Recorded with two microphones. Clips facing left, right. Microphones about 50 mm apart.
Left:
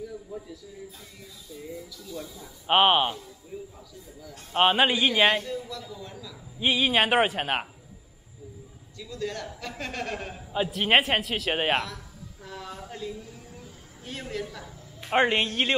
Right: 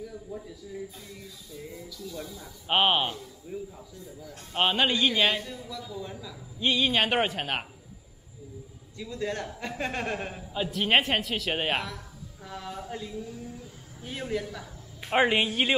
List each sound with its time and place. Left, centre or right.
0.0 s speech: centre
3.2 s speech: centre
4.5 s speech: centre
5.9 s speech: centre
6.6 s speech: centre
8.9 s a man's voice: right
10.7 s speech: centre
12.4 s speech: centre